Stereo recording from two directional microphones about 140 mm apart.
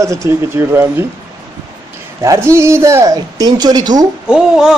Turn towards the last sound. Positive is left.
turn(degrees=-5)  # may be behind; listen again after turning